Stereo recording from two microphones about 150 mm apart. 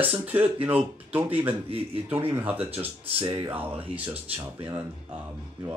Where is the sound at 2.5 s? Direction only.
40° right (ahead or behind).